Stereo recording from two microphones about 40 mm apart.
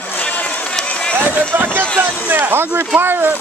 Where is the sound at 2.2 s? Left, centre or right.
Right.